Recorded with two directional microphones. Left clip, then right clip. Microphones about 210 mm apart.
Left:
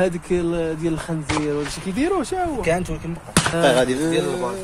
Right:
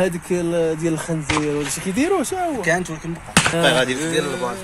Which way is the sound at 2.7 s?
50° left (ahead or behind).